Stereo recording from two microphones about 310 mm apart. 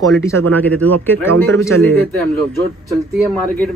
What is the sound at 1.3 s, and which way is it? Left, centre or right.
Speech, right.